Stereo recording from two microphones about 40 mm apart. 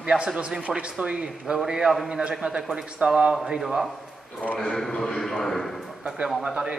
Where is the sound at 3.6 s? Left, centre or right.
Centre.